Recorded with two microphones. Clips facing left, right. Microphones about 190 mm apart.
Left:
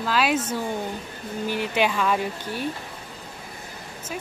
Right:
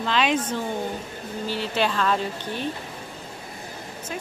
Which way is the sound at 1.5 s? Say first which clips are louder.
Left 1 dB; 15° left (ahead or behind).